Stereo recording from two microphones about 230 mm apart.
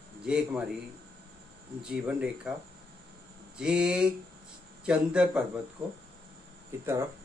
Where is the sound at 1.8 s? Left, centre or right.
Centre.